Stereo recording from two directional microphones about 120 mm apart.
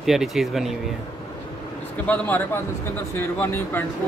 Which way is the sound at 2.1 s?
15° left (ahead or behind).